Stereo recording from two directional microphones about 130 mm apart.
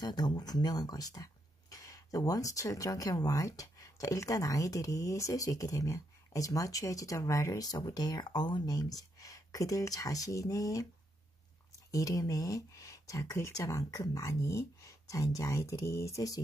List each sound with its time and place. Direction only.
0.0 s speech: 30° left (ahead or behind)
11.9 s speech: 25° left (ahead or behind)